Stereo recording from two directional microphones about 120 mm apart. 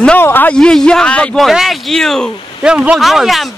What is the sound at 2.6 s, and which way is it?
Speech, 5° right (ahead or behind).